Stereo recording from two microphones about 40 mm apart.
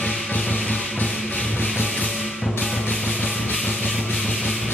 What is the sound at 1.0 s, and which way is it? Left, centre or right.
Rub, left.